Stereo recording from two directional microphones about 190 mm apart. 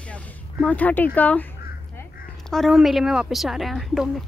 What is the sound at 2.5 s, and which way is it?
A child's voice, centre (ahead or behind).